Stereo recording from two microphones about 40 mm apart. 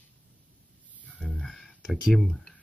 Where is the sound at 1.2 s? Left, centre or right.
Centre.